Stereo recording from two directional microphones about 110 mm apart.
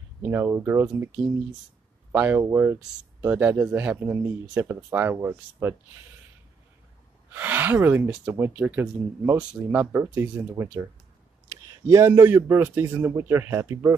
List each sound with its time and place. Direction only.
0.2 s speech: 20° right (ahead or behind)
2.1 s speech: 15° right (ahead or behind)
7.3 s speech: 20° right (ahead or behind)